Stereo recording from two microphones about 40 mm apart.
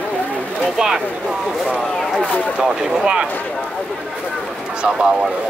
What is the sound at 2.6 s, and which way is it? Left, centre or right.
Speech, right.